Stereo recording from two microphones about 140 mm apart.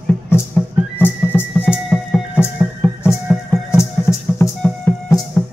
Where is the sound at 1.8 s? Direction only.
Centre (ahead or behind).